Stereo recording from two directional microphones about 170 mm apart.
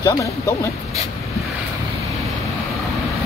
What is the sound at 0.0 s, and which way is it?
Speech, 20° left (ahead or behind).